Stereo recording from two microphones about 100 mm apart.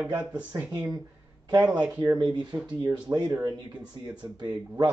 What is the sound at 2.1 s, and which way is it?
Speech, 55° right (ahead or behind).